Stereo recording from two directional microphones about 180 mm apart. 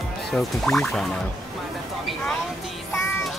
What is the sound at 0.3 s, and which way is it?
Speech, centre (ahead or behind).